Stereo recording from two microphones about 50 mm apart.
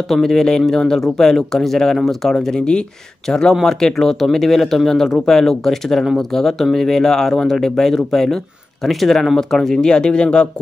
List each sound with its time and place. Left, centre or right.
0.1 s speech: centre